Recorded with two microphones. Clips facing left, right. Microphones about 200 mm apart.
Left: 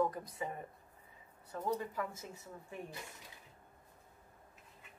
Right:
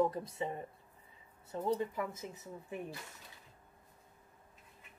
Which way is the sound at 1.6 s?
20° right (ahead or behind).